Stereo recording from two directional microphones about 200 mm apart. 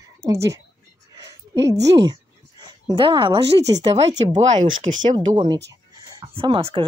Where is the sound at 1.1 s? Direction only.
20° right (ahead or behind).